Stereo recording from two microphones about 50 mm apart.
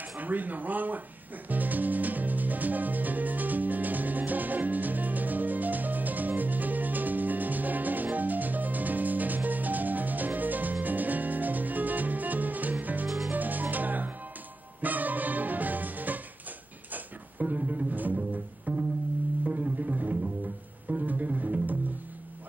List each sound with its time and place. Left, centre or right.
0.2 s speech: right
1.5 s music: right
16.9 s double bass: right
19.4 s music: right